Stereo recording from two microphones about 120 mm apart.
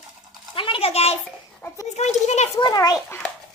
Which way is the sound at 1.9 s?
70° left (ahead or behind).